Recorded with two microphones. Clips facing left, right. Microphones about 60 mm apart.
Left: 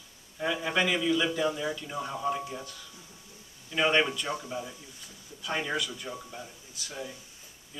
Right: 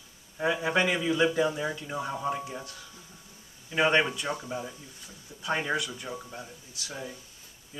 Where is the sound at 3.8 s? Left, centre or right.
Centre.